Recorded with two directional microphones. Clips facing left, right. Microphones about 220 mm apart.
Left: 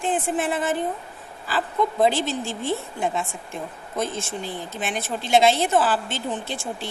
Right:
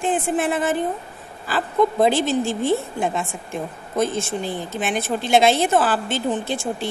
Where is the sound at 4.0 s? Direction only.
55° right (ahead or behind).